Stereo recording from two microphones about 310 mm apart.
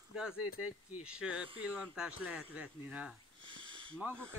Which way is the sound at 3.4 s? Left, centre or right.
Centre.